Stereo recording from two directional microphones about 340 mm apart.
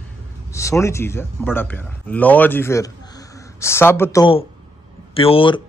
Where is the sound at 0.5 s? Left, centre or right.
Centre.